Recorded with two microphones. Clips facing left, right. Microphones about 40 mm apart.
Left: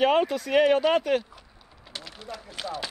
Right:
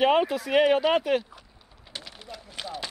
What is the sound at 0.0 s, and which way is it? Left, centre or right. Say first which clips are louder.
Speech: even; centre.